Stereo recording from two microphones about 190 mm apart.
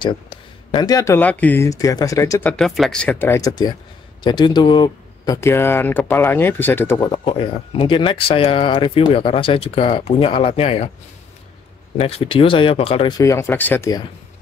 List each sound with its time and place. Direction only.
0.0 s speech: 25° left (ahead or behind)
2.5 s speech: centre (ahead or behind)
7.1 s speech: 30° left (ahead or behind)
12.0 s speech: 30° left (ahead or behind)
13.2 s speech: 15° left (ahead or behind)